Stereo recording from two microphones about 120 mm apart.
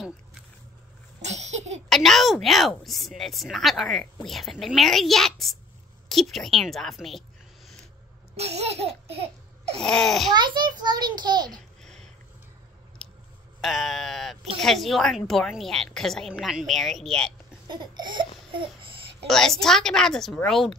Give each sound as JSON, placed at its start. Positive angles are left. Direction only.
{"t": 1.2, "sound": "laughter", "side_deg": -70}
{"t": 1.9, "sound": "a woman's voice", "side_deg": 0}
{"t": 8.4, "sound": "laughter", "side_deg": -60}
{"t": 9.8, "sound": "a woman's voice", "side_deg": 5}
{"t": 10.3, "sound": "a child's voice", "side_deg": -40}
{"t": 11.8, "sound": "a sound", "side_deg": 5}
{"t": 13.0, "sound": "chewing", "side_deg": 5}
{"t": 13.6, "sound": "a woman's voice", "side_deg": 0}
{"t": 17.6, "sound": "a child's voice", "side_deg": -40}
{"t": 18.5, "sound": "a sound", "side_deg": -45}
{"t": 19.2, "sound": "a woman's voice", "side_deg": 5}